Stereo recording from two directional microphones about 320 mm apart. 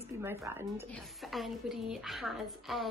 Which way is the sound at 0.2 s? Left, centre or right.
Centre.